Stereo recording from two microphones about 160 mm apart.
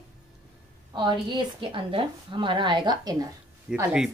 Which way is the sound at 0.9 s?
25° right (ahead or behind).